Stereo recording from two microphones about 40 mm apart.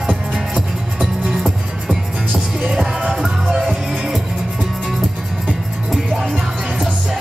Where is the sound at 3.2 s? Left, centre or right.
Centre.